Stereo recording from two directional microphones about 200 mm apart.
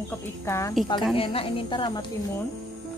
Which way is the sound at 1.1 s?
25° left (ahead or behind).